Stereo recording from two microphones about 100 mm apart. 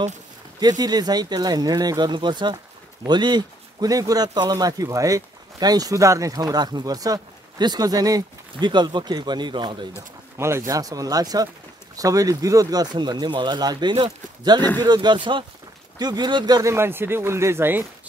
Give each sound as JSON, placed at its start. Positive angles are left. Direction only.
{"t": 0.6, "sound": "speech", "side_deg": -40}
{"t": 10.3, "sound": "speech", "side_deg": -25}
{"t": 10.7, "sound": "speech", "side_deg": -35}
{"t": 12.9, "sound": "speech", "side_deg": -45}
{"t": 16.6, "sound": "speech", "side_deg": -25}